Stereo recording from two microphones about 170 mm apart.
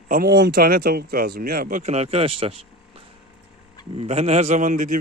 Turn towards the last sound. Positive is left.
turn(degrees=-50)  # may be behind; listen again after turning